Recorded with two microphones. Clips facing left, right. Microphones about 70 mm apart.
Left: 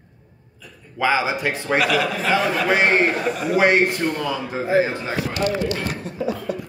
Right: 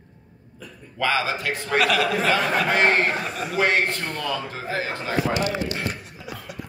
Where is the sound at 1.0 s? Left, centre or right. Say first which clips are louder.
Left 3 dB; centre.